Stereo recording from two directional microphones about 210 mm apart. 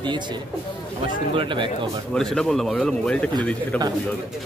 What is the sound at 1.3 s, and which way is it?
Speech, 25° right (ahead or behind).